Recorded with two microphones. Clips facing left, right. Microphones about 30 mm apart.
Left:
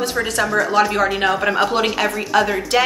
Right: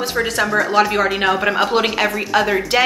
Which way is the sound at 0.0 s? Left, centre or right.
Centre.